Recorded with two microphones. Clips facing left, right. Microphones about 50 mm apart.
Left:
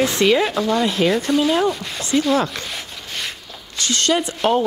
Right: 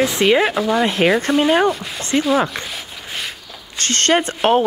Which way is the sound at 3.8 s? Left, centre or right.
Right.